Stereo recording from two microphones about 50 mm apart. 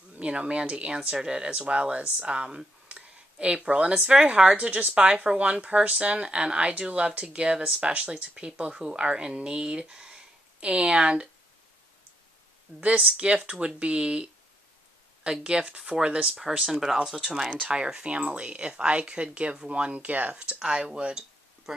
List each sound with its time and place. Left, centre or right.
0.2 s speech: right
12.7 s speech: right
13.0 s speech: right
15.4 s speech: right
16.7 s speech: centre; by 20.4 s right
20.4 s speech: centre